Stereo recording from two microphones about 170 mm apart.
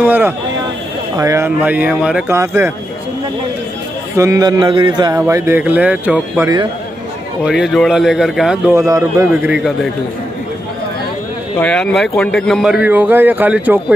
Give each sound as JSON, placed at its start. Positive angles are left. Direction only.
{"t": 0.0, "sound": "a sound", "side_deg": -10}
{"t": 1.1, "sound": "a man's voice", "side_deg": -20}
{"t": 4.2, "sound": "a man's voice", "side_deg": -20}
{"t": 8.7, "sound": "a man's voice", "side_deg": -20}
{"t": 9.3, "sound": "a man's voice", "side_deg": -5}
{"t": 11.5, "sound": "a man's voice", "side_deg": 5}